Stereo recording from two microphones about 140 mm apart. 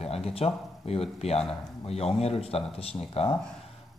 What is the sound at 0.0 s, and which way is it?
Speech, 45° left (ahead or behind).